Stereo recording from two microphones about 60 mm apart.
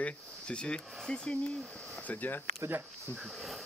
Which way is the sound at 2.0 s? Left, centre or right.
Left.